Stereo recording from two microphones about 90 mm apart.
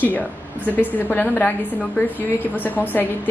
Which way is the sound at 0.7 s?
20° left (ahead or behind).